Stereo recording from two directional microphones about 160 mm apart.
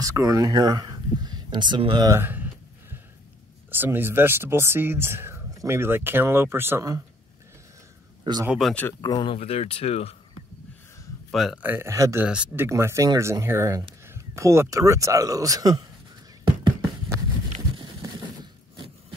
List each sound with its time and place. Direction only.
0.0 s speech: 20° right (ahead or behind)
2.0 s a sound: 15° right (ahead or behind)
3.7 s speech: 15° right (ahead or behind)
8.2 s speech: 25° right (ahead or behind)
8.5 s speech: centre (ahead or behind)
9.0 s speech: 25° left (ahead or behind)
11.3 s speech: centre (ahead or behind)
11.6 s speech: 15° right (ahead or behind)
12.3 s speech: 5° right (ahead or behind)
12.6 s speech: 15° right (ahead or behind)
18.4 s a sound: 30° right (ahead or behind)